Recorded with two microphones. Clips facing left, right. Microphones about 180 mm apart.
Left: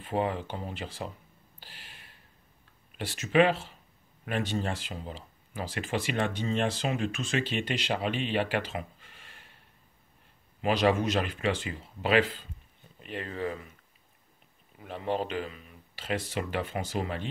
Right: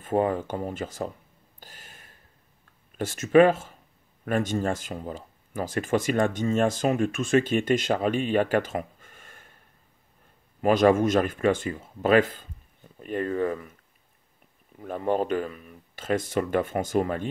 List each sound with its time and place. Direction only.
0.0 s speech: 45° right (ahead or behind)
1.6 s a sound: 45° right (ahead or behind)
3.0 s speech: 45° right (ahead or behind)
10.6 s speech: 50° right (ahead or behind)
14.8 s speech: 50° right (ahead or behind)